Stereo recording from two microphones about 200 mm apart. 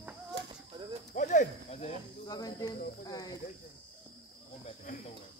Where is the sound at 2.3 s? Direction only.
20° left (ahead or behind).